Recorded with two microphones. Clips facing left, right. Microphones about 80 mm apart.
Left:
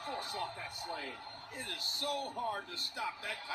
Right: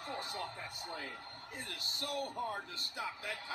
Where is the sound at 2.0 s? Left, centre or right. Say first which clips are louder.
Left 2 dB; left.